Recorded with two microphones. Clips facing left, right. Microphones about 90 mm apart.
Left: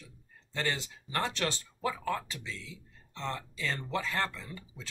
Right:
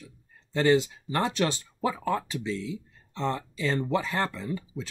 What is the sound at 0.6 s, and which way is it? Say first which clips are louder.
Speech: right 12 dB; 20° right (ahead or behind).